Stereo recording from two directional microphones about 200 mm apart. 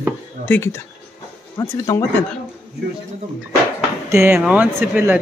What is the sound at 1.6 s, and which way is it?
Speech, 15° left (ahead or behind).